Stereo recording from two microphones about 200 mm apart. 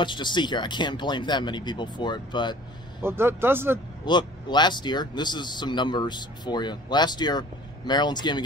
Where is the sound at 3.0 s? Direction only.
10° right (ahead or behind).